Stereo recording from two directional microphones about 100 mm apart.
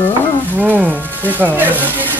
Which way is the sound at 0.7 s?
20° right (ahead or behind).